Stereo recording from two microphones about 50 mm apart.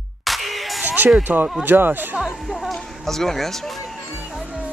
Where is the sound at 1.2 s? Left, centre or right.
Right.